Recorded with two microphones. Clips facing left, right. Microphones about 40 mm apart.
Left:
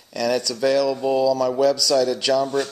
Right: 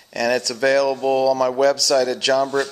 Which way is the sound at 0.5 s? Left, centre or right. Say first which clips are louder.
Right 2 dB; right.